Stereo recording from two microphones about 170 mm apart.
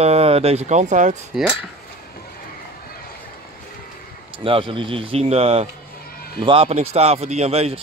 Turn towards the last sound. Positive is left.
turn(degrees=-35)  # may be behind; listen again after turning